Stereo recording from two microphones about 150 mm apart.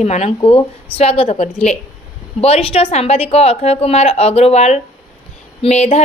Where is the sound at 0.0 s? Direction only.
45° left (ahead or behind).